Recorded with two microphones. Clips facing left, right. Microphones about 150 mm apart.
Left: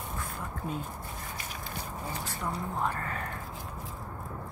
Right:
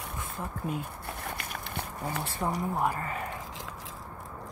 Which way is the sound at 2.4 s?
30° right (ahead or behind).